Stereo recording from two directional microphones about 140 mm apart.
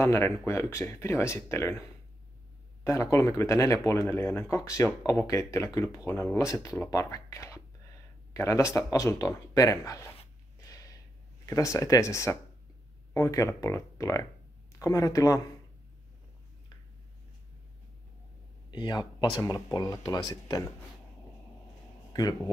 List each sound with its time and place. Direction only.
0.0 s speech: 20° left (ahead or behind)
10.7 s a sound: 25° left (ahead or behind)
11.4 s speech: 20° left (ahead or behind)
18.7 s speech: 30° left (ahead or behind)